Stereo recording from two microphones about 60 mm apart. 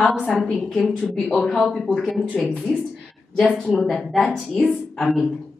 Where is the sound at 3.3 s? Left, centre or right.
Centre.